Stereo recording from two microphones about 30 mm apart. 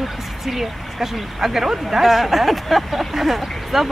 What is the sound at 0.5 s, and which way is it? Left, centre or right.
Speech, centre.